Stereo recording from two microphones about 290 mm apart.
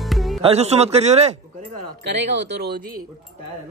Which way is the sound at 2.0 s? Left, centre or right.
Right.